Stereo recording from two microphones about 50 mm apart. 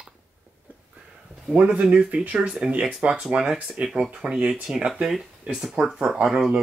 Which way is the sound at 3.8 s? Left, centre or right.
Centre.